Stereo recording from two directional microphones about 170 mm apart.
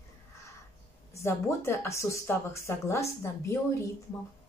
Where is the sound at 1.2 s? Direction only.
15° left (ahead or behind).